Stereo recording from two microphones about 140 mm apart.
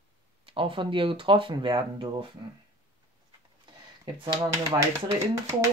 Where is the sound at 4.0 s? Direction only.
35° right (ahead or behind).